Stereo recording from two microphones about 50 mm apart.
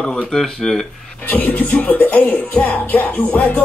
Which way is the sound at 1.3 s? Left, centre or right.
Left.